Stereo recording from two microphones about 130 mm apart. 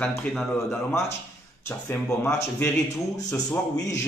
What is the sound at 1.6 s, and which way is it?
A man's voice, 15° left (ahead or behind).